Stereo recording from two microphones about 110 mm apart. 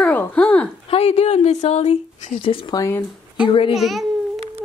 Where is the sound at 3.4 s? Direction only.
55° left (ahead or behind).